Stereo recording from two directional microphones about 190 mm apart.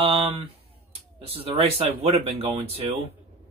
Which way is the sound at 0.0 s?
25° right (ahead or behind).